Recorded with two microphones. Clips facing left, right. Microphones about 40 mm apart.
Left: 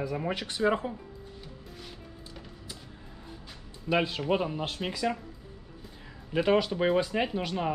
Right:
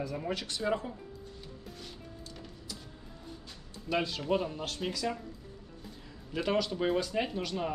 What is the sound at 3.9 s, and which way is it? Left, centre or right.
Speech, left.